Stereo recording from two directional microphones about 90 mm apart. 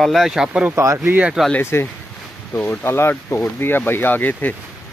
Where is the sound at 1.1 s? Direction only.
20° right (ahead or behind).